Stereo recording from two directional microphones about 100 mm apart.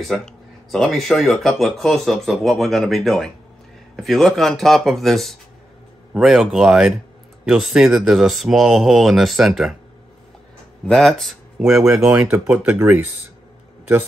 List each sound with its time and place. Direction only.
0.0 s speech: centre (ahead or behind)
10.9 s speech: 5° left (ahead or behind)
12.1 s speech: 20° right (ahead or behind)